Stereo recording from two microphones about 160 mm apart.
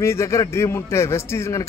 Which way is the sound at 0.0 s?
15° left (ahead or behind).